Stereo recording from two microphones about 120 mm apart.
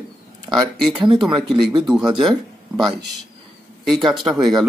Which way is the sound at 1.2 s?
Centre (ahead or behind).